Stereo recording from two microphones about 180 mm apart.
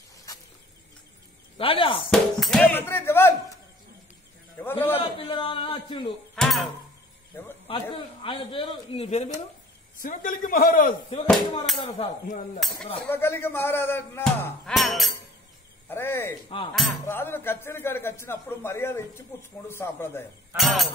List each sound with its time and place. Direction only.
1.6 s a man's voice: 30° left (ahead or behind)
2.0 s a man's voice: 5° left (ahead or behind)
4.6 s a man's voice: 10° left (ahead or behind)
5.2 s a man's voice: 30° left (ahead or behind)
6.3 s speech: centre (ahead or behind)
7.9 s speech: 30° left (ahead or behind)
10.0 s a man's voice: 50° left (ahead or behind)
11.2 s speech: centre (ahead or behind)
13.1 s a man's voice: 10° left (ahead or behind)
14.7 s speech: centre (ahead or behind)
15.9 s a man's voice: 10° left (ahead or behind)
16.7 s speech: centre (ahead or behind)
17.0 s a man's voice: 15° left (ahead or behind)
20.5 s speech: centre (ahead or behind)